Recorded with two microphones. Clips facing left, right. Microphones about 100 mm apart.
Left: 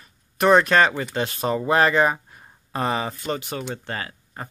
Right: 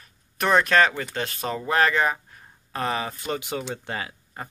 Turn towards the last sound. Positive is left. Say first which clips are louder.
# left 1 dB
turn(degrees=-10)  # may be behind; listen again after turning